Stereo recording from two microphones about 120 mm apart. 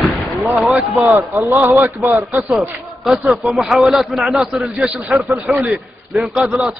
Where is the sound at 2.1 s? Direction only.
Centre (ahead or behind).